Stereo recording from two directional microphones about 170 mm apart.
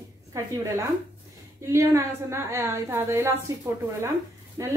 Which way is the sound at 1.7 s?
15° right (ahead or behind).